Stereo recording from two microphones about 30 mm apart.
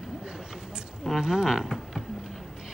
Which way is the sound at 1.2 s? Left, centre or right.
Centre.